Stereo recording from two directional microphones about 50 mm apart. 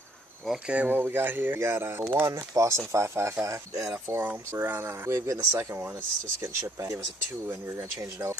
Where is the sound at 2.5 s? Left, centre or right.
Right.